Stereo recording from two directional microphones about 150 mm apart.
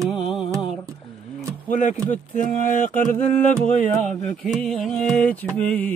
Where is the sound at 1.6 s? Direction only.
55° left (ahead or behind).